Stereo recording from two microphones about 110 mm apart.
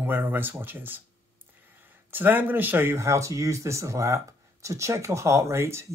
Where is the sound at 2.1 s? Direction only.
15° right (ahead or behind).